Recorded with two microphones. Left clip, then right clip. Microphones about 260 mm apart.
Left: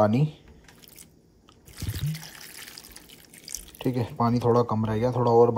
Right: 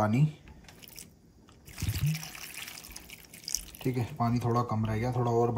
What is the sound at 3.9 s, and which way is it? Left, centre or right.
Speech, left.